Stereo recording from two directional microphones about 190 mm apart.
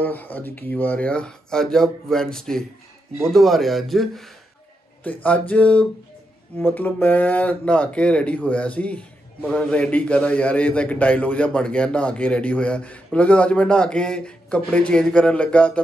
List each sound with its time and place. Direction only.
0.0 s a man's voice: 10° left (ahead or behind)
5.5 s a man's voice: 5° left (ahead or behind)